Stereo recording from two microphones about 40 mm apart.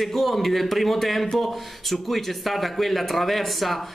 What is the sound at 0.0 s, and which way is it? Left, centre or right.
A man's voice, centre.